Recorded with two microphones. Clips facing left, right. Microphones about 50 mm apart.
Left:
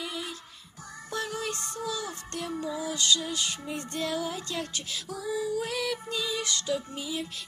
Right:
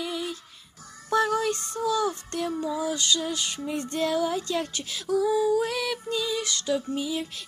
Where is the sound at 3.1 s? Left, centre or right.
Centre.